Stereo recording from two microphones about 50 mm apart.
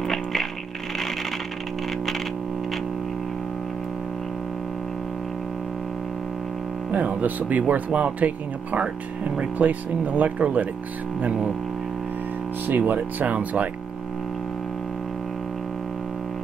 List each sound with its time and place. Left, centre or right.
0.1 s music: centre
6.9 s speech: right
12.6 s speech: right